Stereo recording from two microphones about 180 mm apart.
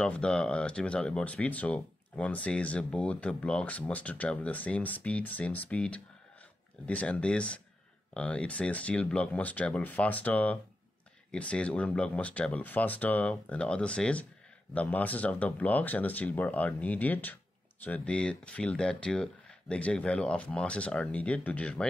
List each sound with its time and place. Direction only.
0.0 s speech: 5° left (ahead or behind)